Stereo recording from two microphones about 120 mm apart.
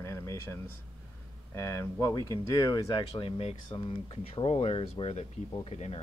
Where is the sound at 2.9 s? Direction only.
45° left (ahead or behind).